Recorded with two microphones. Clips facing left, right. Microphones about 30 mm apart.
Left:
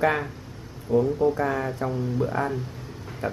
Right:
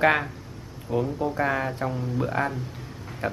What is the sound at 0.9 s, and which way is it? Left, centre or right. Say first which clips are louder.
Speech: left 5 dB; right.